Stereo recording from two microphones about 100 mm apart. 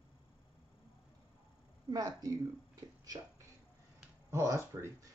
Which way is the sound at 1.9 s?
35° right (ahead or behind).